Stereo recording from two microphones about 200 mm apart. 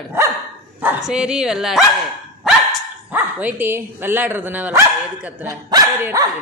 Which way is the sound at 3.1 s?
10° right (ahead or behind).